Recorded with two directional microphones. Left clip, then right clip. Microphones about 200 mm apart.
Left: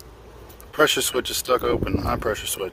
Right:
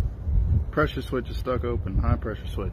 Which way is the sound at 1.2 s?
55° left (ahead or behind).